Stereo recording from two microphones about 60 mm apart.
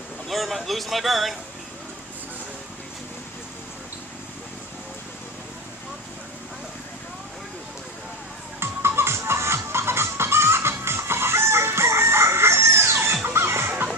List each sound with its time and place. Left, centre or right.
0.3 s speech: centre
8.5 s music: right